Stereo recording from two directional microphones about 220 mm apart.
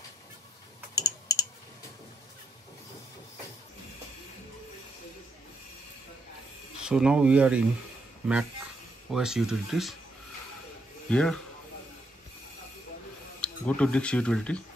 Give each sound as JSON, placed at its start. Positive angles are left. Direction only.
{"t": 0.9, "sound": "typing", "side_deg": 15}
{"t": 6.8, "sound": "speech", "side_deg": -5}
{"t": 11.1, "sound": "speech", "side_deg": 5}
{"t": 13.4, "sound": "speech", "side_deg": 5}